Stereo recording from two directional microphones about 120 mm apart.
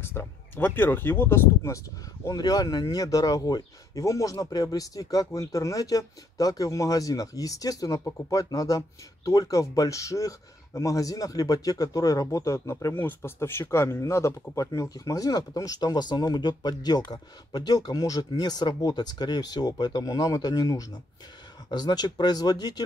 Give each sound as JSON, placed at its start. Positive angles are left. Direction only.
{"t": 0.0, "sound": "speech", "side_deg": 20}
{"t": 2.2, "sound": "speech", "side_deg": 35}